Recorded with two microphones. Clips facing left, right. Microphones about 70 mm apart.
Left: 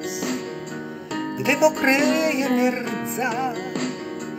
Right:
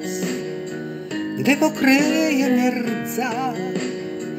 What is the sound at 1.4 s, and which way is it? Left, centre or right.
Speech, left.